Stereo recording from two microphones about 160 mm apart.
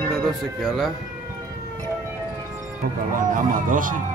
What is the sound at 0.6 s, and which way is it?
Speech, centre (ahead or behind).